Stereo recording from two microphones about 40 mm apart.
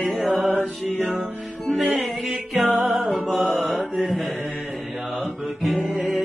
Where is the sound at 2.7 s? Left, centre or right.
Right.